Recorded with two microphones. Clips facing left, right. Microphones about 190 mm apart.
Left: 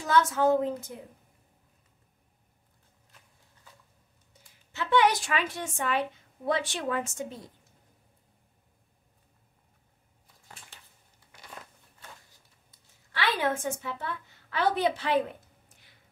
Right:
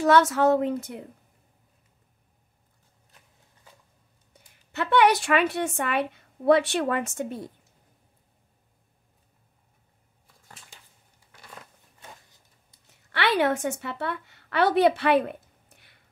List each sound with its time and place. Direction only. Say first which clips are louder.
0.0 s a woman's voice: right 5 dB; 70° right (ahead or behind)
4.7 s a woman's voice: right 4 dB; 65° right (ahead or behind)
13.1 s a woman's voice: right 5 dB; 70° right (ahead or behind)